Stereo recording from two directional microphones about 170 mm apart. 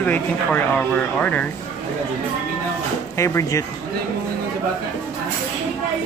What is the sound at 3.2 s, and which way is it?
Speech, 15° left (ahead or behind).